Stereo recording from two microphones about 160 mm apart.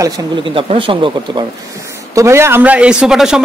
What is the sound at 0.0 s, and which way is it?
Speech, 25° right (ahead or behind).